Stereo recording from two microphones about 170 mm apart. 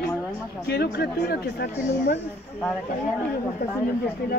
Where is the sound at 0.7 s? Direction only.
65° left (ahead or behind).